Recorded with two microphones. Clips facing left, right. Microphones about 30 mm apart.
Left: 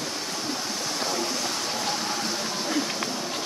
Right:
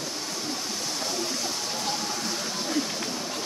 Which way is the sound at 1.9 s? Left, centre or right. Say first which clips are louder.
Left 2 dB; left.